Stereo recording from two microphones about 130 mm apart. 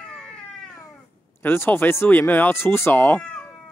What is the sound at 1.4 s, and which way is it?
Speech, 15° left (ahead or behind).